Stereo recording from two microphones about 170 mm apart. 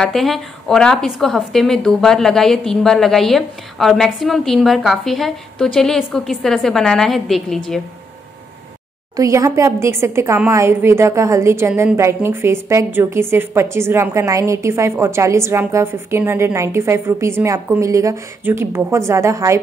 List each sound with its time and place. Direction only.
0.0 s a woman's voice: centre (ahead or behind)
9.1 s a woman's voice: 20° right (ahead or behind)